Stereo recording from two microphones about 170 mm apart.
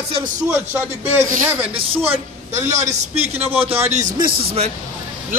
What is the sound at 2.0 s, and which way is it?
A man's voice, 45° right (ahead or behind).